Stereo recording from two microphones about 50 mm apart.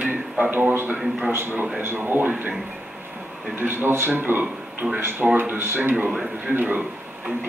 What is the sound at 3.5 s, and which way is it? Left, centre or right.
A man's voice, right.